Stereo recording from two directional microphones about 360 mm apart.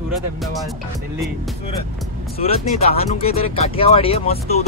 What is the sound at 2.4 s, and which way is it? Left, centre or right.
Speech, centre.